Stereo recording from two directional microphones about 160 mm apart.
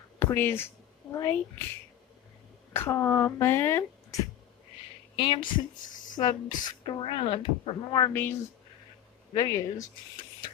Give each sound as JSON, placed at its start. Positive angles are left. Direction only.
{"t": 0.2, "sound": "speech", "side_deg": 15}
{"t": 2.7, "sound": "speech", "side_deg": 15}
{"t": 5.1, "sound": "a woman's voice", "side_deg": 30}
{"t": 5.4, "sound": "speech", "side_deg": 55}
{"t": 6.1, "sound": "speech", "side_deg": 25}
{"t": 8.1, "sound": "speech", "side_deg": 15}
{"t": 9.3, "sound": "speech", "side_deg": 25}